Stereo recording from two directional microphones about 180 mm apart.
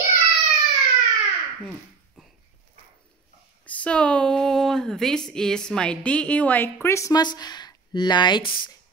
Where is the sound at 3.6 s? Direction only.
10° left (ahead or behind).